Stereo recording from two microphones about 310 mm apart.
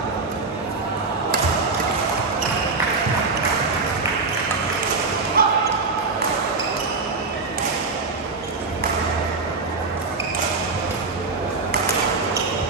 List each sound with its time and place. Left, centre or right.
5.4 s basketball bounce: right